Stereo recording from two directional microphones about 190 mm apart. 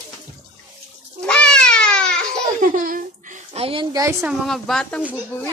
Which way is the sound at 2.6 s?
45° right (ahead or behind).